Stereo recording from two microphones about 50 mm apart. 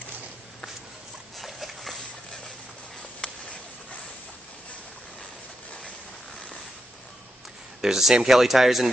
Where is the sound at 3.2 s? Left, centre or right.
Left.